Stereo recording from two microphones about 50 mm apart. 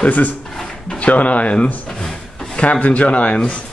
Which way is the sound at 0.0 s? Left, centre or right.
Left.